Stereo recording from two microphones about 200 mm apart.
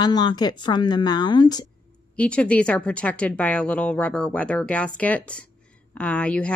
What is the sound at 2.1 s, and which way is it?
Speech, 5° left (ahead or behind).